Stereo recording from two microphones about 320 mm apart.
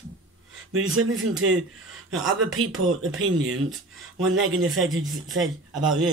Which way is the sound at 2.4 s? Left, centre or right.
Right.